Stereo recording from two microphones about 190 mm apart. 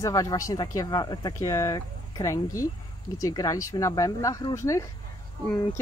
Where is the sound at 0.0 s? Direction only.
15° left (ahead or behind).